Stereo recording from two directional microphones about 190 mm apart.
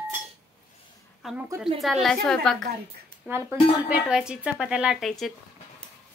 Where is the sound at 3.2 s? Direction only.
10° right (ahead or behind).